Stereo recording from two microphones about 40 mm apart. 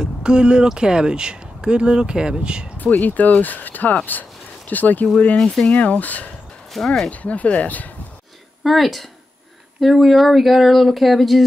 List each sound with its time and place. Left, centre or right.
0.0 s speech: right
2.8 s speech: left
5.4 s speech: centre
5.7 s speech: left
6.8 s speech: centre
7.1 s speech: left
8.6 s speech: centre